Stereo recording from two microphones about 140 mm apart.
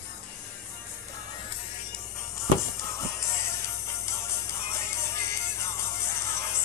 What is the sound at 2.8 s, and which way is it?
Music, 20° left (ahead or behind).